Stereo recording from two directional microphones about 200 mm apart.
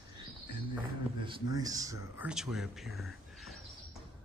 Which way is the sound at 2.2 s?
5° right (ahead or behind).